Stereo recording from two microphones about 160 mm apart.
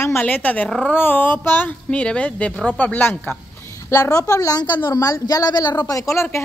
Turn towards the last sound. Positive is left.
turn(degrees=15)  # may be behind; listen again after turning